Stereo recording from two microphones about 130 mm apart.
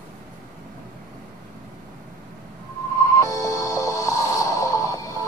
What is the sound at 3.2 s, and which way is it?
Music, 25° left (ahead or behind).